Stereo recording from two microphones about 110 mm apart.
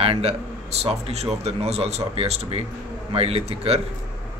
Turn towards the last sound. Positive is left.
turn(degrees=-65)  # may be behind; listen again after turning